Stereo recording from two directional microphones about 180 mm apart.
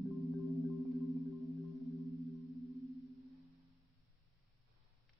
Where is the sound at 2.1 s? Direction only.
20° left (ahead or behind).